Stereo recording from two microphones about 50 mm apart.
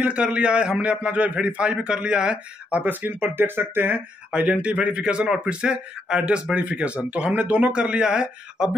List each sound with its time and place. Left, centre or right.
0.0 s speech: right
2.8 s speech: right
4.3 s speech: right